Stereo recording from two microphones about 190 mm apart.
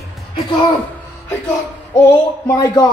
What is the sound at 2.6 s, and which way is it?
Speech, 20° left (ahead or behind).